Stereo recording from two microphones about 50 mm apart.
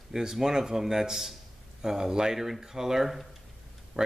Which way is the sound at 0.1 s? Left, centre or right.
Centre.